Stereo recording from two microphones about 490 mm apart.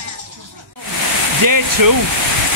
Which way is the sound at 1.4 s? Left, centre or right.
Right.